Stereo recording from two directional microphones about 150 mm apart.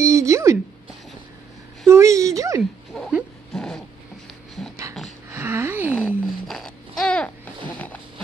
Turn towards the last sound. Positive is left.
turn(degrees=10)  # may be behind; listen again after turning